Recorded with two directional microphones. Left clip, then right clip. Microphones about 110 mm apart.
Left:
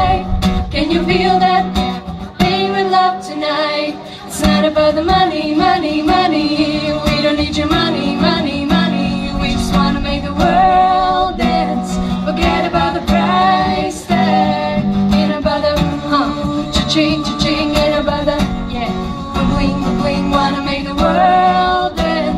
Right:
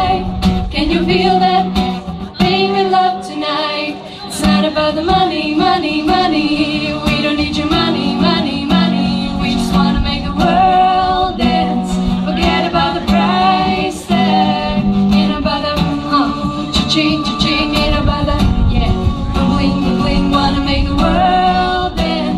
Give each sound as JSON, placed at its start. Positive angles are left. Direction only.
{"t": 0.0, "sound": "music", "side_deg": 40}
{"t": 4.4, "sound": "music", "side_deg": 40}
{"t": 10.4, "sound": "music", "side_deg": 40}
{"t": 19.5, "sound": "music", "side_deg": 40}